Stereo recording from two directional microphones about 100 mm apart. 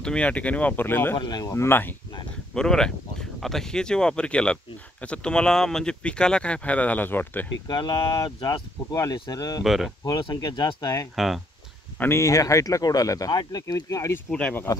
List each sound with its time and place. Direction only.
0.0 s speech: 10° left (ahead or behind)
1.1 s speech: 45° left (ahead or behind)
1.5 s speech: 25° left (ahead or behind)
2.5 s speech: 5° left (ahead or behind)
7.6 s speech: 45° left (ahead or behind)
9.6 s speech: centre (ahead or behind)
10.0 s speech: 40° left (ahead or behind)
11.1 s speech: centre (ahead or behind)
12.0 s speech: 30° left (ahead or behind)